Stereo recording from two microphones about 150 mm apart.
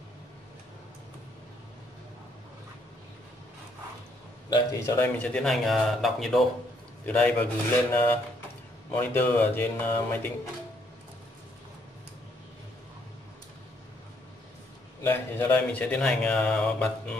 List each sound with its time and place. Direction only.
4.5 s a man's voice: 20° left (ahead or behind)
15.0 s speech: 15° left (ahead or behind)